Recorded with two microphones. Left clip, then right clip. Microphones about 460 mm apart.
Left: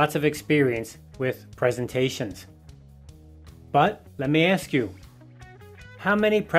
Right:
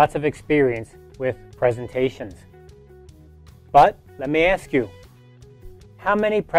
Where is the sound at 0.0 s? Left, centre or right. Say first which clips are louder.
Right 4 dB; right.